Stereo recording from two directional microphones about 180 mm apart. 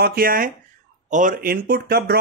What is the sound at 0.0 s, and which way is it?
Speech, 55° right (ahead or behind).